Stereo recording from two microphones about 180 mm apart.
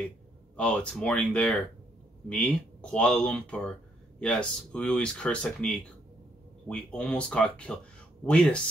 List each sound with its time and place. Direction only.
0.6 s speech: 5° left (ahead or behind)